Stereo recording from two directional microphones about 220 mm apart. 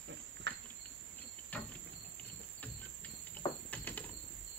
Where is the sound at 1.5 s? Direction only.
5° left (ahead or behind).